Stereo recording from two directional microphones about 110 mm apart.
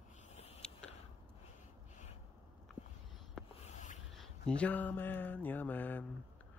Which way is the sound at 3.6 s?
90° left.